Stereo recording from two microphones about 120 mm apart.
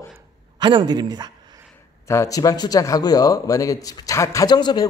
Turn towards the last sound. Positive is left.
turn(degrees=35)  # may be behind; listen again after turning